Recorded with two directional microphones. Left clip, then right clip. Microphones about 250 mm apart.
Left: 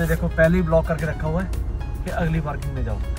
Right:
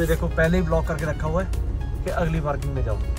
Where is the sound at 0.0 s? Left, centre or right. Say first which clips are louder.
Left 3 dB; centre.